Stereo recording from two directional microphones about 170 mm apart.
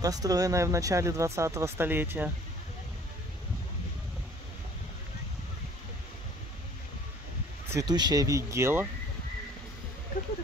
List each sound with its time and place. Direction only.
0.0 s speech: 20° right (ahead or behind)
7.7 s speech: 25° right (ahead or behind)